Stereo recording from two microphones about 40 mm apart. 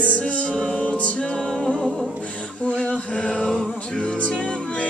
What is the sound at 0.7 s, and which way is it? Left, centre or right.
Music, left.